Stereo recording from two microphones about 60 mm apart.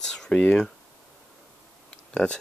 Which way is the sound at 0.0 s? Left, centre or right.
Centre.